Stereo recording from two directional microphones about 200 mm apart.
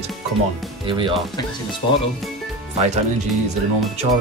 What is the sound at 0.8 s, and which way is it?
Speech, 25° right (ahead or behind).